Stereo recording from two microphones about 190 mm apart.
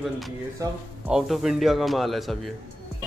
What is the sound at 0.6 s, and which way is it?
Speech, 15° right (ahead or behind).